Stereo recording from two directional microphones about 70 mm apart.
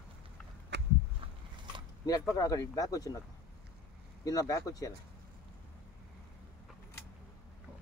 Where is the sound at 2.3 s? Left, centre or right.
Left.